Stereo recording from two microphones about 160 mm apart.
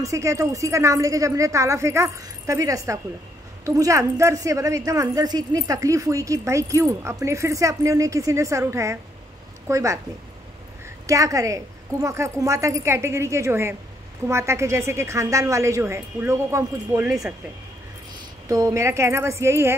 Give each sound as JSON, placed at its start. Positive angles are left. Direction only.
{"t": 0.0, "sound": "a woman's voice", "side_deg": -20}
{"t": 11.1, "sound": "a woman's voice", "side_deg": -20}
{"t": 18.5, "sound": "a woman's voice", "side_deg": -20}